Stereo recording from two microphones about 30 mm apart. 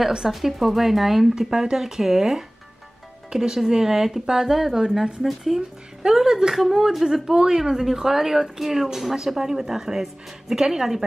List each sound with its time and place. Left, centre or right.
0.3 s speech: centre
1.3 s speech: centre
5.6 s speech: centre